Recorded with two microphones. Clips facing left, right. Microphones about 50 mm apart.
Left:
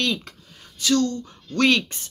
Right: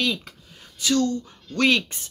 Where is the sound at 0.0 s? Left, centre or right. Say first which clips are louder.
Even; centre.